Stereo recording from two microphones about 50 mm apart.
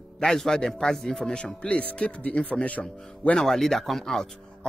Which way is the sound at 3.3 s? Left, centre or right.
Centre.